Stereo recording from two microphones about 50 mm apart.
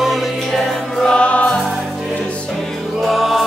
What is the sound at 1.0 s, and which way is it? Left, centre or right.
Music, centre.